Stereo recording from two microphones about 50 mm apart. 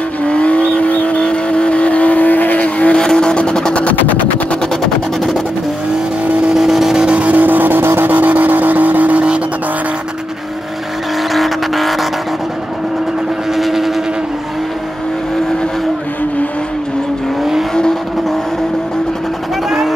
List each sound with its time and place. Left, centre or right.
0.2 s vehicle: left
3.0 s vehicle: centre
3.8 s music: left
6.5 s vehicle: centre
7.1 s vehicle: right
7.4 s vehicle: right
8.1 s a sound: right
11.3 s vehicle: centre
13.6 s vehicle: centre
17.4 s vehicle: centre